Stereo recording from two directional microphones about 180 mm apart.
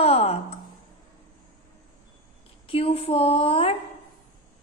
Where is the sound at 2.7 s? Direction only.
30° left (ahead or behind).